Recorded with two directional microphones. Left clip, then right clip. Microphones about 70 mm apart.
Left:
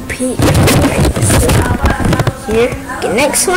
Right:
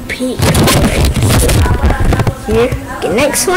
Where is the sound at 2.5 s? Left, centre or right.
Right.